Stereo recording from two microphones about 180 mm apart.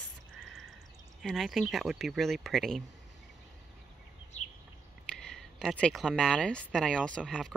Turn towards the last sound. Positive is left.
turn(degrees=5)  # may be behind; listen again after turning